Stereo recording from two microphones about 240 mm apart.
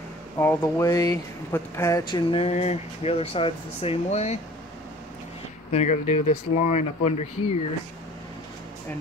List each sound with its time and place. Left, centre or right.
0.4 s speech: centre; by 4.4 s left
5.7 s speech: left